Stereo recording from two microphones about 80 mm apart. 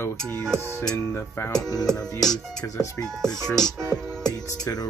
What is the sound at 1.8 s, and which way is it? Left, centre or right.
Music, centre.